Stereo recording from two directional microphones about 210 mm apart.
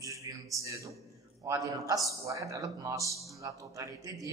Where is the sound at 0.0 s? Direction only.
15° right (ahead or behind).